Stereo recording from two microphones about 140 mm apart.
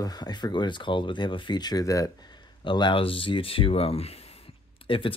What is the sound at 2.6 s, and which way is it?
Speech, 35° left (ahead or behind).